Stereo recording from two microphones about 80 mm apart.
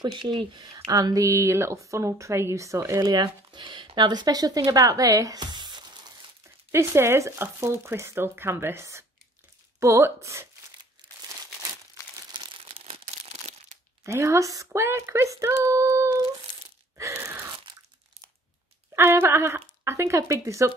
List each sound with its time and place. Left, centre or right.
0.0 s speech: right
0.7 s speech: right
3.0 s speech: right
3.5 s speech: right
5.4 s a sound: right
6.7 s speech: right
14.0 s speech: right
16.9 s gasp: right
18.9 s speech: right